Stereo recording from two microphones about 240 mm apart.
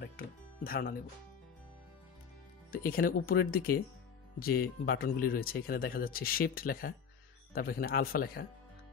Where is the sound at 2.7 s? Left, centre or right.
Left.